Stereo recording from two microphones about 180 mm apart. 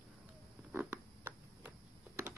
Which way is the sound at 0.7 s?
10° right (ahead or behind).